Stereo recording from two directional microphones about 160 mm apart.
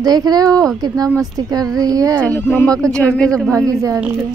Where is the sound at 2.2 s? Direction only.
10° left (ahead or behind).